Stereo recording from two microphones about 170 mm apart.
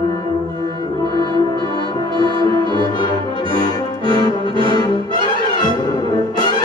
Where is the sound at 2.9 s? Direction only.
25° left (ahead or behind).